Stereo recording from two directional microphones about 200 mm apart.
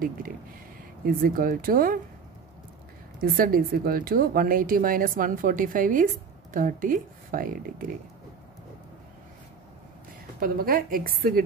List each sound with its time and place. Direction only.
1.0 s speech: 45° right (ahead or behind)
3.2 s speech: 45° right (ahead or behind)
10.4 s speech: 45° right (ahead or behind)